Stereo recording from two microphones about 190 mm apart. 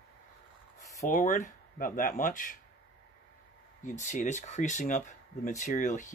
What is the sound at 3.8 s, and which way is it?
Speech, 40° left (ahead or behind).